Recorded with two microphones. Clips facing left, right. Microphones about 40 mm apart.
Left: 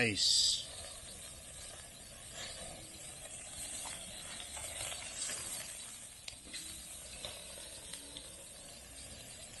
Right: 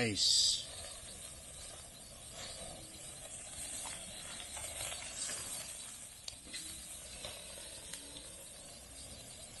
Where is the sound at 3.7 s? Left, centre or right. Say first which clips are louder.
Even; left.